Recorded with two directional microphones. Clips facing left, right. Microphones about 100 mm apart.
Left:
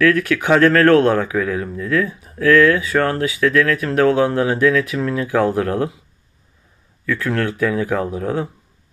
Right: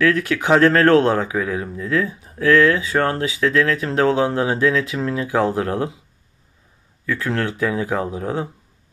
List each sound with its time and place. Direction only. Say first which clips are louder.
0.0 s speech: left 2 dB; 20° right (ahead or behind)
7.1 s speech: left 2 dB; 20° right (ahead or behind)